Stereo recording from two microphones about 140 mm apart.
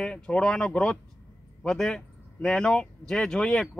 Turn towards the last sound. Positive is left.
turn(degrees=5)  # may be behind; listen again after turning